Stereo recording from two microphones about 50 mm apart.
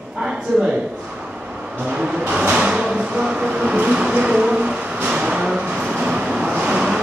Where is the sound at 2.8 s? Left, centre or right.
Centre.